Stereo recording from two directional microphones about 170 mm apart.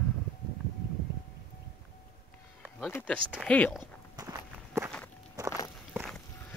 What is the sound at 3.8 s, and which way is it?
Walk, 20° right (ahead or behind).